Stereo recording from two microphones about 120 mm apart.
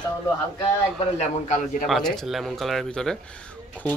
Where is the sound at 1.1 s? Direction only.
70° left (ahead or behind).